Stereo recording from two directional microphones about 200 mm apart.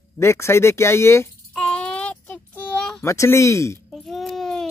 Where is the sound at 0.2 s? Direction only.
15° left (ahead or behind).